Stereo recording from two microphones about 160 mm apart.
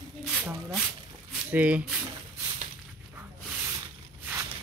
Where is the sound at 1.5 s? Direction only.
10° right (ahead or behind).